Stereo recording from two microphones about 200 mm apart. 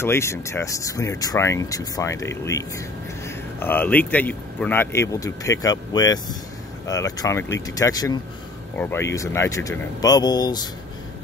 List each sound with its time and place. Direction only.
0.0 s speech: 15° left (ahead or behind)